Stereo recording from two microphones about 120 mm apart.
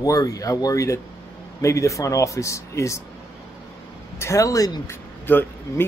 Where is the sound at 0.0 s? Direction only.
30° left (ahead or behind).